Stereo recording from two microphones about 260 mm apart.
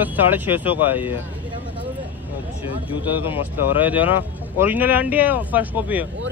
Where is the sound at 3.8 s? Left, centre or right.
Centre.